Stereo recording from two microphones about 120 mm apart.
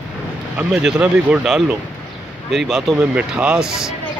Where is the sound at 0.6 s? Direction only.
10° right (ahead or behind).